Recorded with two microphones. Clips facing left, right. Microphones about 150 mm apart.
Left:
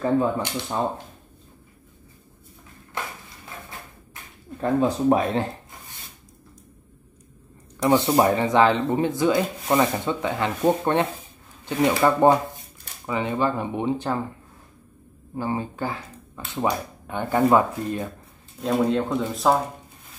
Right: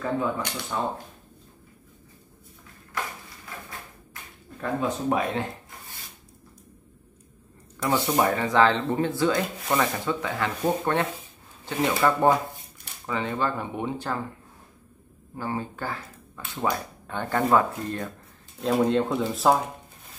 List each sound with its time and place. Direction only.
0.0 s speech: 30° left (ahead or behind)
4.1 s speech: 30° left (ahead or behind)
7.8 s speech: 25° left (ahead or behind)
15.3 s speech: 20° left (ahead or behind)
18.6 s speech: centre (ahead or behind)